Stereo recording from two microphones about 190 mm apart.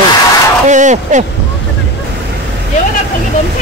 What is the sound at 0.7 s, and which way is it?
Speech, 40° right (ahead or behind).